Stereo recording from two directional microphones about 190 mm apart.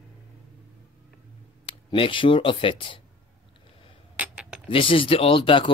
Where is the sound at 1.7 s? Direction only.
25° left (ahead or behind).